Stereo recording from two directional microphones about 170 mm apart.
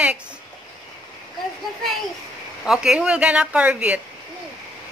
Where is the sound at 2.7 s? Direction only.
5° right (ahead or behind).